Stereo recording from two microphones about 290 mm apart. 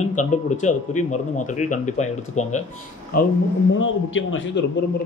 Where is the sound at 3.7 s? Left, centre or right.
Left.